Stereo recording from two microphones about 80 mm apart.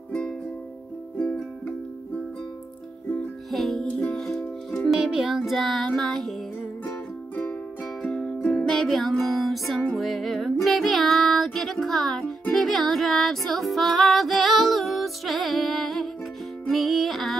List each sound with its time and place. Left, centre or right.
1.1 s music: centre
3.5 s music: centre
4.9 s music: centre
8.1 s music: centre